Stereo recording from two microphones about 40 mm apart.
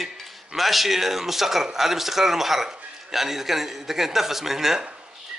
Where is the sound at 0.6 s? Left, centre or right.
Centre.